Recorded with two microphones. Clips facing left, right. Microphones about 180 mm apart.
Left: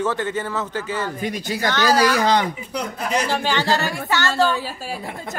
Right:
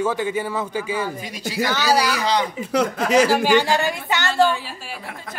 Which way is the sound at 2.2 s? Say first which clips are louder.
Left 3 dB; 50° left (ahead or behind).